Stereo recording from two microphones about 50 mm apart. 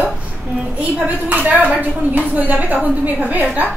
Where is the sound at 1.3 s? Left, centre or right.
Right.